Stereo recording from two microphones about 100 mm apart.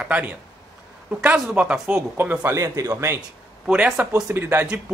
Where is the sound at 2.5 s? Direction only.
30° right (ahead or behind).